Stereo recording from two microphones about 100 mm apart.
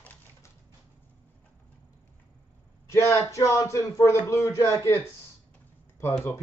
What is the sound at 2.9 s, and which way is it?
Speech, 35° left (ahead or behind).